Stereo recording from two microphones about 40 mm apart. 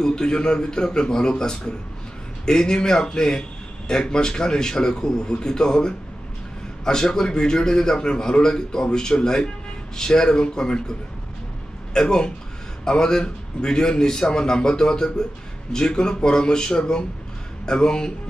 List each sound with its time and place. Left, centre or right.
0.0 s a man's voice: left
11.9 s a man's voice: centre